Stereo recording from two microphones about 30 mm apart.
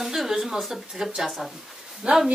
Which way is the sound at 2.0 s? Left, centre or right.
Right.